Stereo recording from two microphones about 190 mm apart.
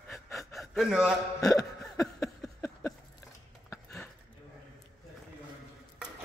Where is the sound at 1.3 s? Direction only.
15° left (ahead or behind).